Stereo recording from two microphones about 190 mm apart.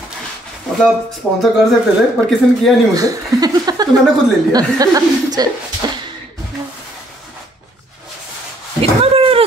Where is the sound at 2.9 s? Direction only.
20° right (ahead or behind).